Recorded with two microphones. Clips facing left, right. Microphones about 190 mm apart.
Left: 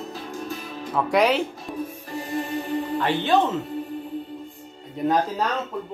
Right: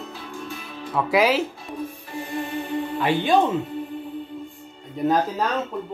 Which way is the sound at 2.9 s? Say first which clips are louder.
Right 2 dB; 10° right (ahead or behind).